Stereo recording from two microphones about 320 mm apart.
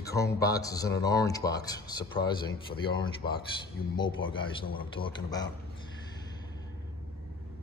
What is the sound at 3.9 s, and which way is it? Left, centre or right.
Speech, centre.